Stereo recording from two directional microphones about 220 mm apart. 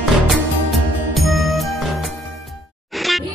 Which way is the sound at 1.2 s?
Centre (ahead or behind).